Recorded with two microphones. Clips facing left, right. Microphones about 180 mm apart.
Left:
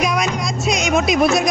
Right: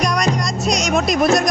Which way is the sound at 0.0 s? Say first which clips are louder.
Right 1 dB; centre (ahead or behind).